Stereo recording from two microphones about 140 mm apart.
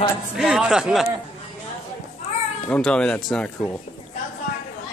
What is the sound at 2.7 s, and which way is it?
Speech, 5° left (ahead or behind).